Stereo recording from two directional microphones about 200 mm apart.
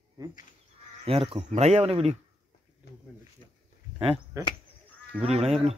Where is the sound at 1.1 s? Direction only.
25° right (ahead or behind).